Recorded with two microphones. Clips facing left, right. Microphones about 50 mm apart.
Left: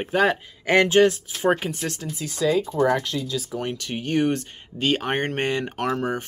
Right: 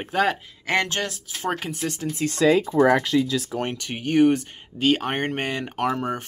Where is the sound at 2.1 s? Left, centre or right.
Right.